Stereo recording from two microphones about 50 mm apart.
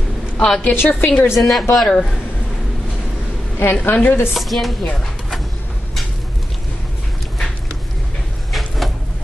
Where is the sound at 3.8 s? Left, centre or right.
Left.